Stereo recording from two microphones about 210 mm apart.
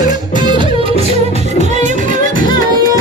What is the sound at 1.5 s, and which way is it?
Music, 35° right (ahead or behind).